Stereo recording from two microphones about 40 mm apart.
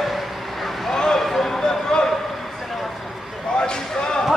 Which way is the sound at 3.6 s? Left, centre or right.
Centre.